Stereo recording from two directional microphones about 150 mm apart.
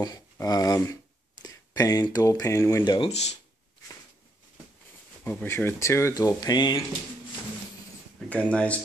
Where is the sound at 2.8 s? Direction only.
30° left (ahead or behind).